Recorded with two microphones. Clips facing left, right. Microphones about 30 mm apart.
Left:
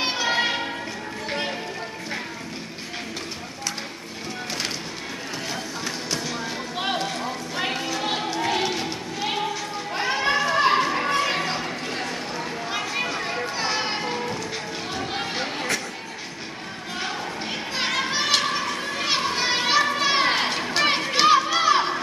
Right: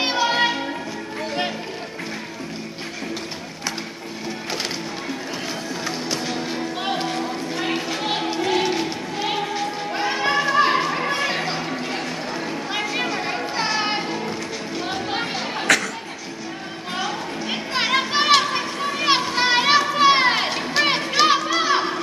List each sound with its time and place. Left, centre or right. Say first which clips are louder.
0.0 s music: right 3 dB; centre
5.9 s music: right 3 dB; centre
8.0 s a sound: right 2 dB; centre
9.9 s children playing: right 1 dB; centre
14.9 s chatter: right 4 dB; centre
15.7 s a sound: right 12 dB; right
17.9 s children playing: right 7 dB; right; by 21.8 s centre